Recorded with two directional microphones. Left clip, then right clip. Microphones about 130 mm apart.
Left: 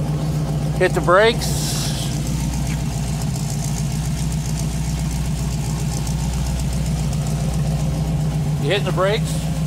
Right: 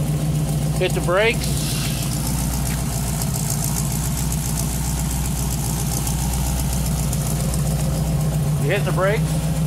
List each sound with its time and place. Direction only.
0.7 s speech: 40° left (ahead or behind)
8.6 s speech: 60° left (ahead or behind)